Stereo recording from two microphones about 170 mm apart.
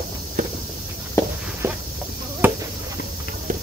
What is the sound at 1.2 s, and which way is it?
Walk, 15° left (ahead or behind).